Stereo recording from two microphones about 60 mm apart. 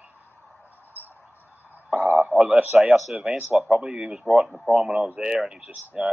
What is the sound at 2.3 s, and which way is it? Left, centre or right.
Speech, centre.